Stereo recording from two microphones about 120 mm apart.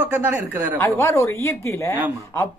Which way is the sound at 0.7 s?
25° left (ahead or behind).